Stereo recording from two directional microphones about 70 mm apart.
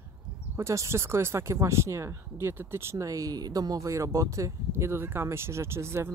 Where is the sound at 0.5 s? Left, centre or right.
Right.